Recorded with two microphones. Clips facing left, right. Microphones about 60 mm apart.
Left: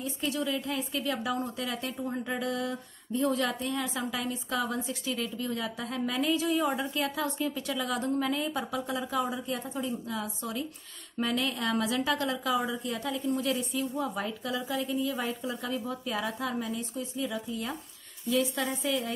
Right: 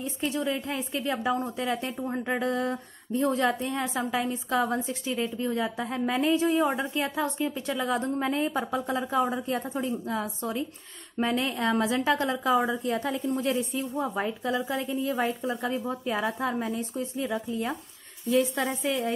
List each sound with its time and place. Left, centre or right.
0.0 s a woman's voice: right